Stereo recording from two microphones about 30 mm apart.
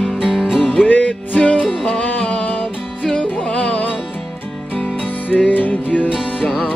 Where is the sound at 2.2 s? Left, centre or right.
Left.